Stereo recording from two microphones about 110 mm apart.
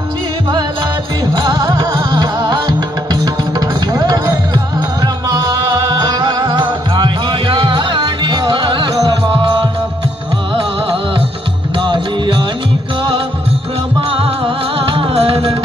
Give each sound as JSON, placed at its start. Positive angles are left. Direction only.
{"t": 1.3, "sound": "music", "side_deg": -35}
{"t": 11.8, "sound": "music", "side_deg": -45}
{"t": 14.1, "sound": "music", "side_deg": -55}